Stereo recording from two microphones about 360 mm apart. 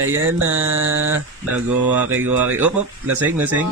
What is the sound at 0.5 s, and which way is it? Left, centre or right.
Mantra, centre.